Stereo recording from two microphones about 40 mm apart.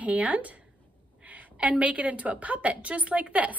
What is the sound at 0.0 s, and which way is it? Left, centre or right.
A woman's voice, right.